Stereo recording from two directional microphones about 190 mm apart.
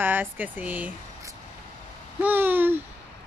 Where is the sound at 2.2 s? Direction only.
10° right (ahead or behind).